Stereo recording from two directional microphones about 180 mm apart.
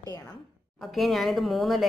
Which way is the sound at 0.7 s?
Centre (ahead or behind).